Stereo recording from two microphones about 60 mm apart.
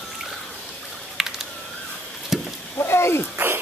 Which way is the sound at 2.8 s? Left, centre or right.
Left.